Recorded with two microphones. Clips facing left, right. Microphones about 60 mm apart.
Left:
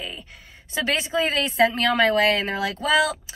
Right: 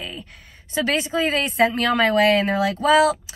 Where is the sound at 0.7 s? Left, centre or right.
Right.